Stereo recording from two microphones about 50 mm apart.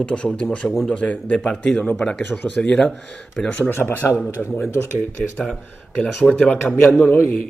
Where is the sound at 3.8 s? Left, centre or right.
Left.